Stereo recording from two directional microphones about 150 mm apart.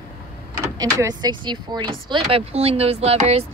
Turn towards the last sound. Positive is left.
turn(degrees=-45)  # may be behind; listen again after turning